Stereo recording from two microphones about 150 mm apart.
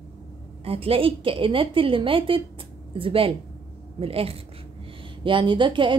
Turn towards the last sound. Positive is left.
turn(degrees=-35)  # may be behind; listen again after turning